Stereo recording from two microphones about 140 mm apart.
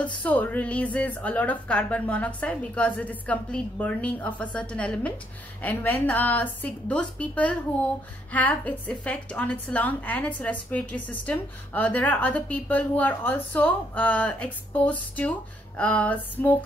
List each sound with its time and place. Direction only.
0.0 s a woman's voice: 10° left (ahead or behind)